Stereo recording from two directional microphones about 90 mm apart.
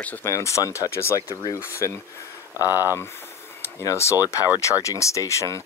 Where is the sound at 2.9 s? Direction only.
30° left (ahead or behind).